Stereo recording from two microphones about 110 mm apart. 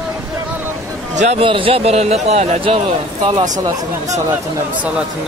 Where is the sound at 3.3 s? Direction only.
40° right (ahead or behind).